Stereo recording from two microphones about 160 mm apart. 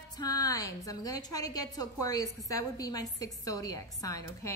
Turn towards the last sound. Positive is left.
turn(degrees=20)  # may be behind; listen again after turning